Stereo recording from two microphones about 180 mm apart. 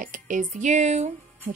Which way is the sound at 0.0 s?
50° right (ahead or behind).